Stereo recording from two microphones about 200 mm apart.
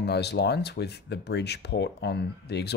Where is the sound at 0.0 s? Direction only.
55° left (ahead or behind).